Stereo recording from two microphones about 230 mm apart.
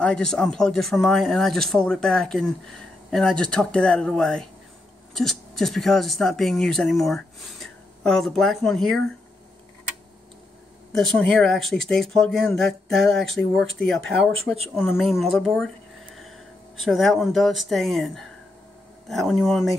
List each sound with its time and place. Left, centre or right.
0.0 s speech: centre
10.9 s speech: centre
14.8 s speech: centre
16.8 s speech: centre